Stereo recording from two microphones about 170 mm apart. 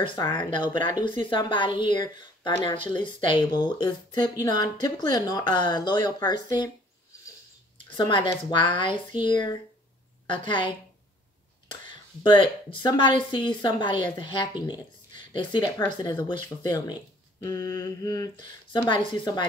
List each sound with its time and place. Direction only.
0.0 s a woman's voice: 30° left (ahead or behind)
7.9 s a woman's voice: 30° left (ahead or behind)